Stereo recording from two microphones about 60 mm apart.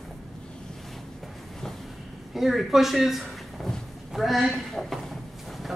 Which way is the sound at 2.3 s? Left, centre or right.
Centre.